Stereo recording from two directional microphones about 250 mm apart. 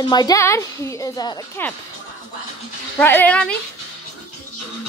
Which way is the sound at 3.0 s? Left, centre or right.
Centre.